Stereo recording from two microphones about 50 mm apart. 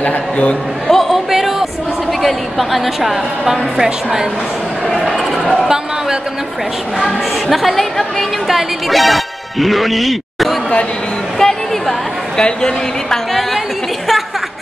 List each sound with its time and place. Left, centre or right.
0.0 s a man's voice: left
0.8 s a sound: centre
2.2 s a woman's voice: centre
7.0 s a woman's voice: centre
11.4 s a woman's voice: centre
13.3 s a sound: centre